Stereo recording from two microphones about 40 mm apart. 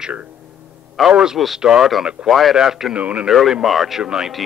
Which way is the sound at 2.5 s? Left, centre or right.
Centre.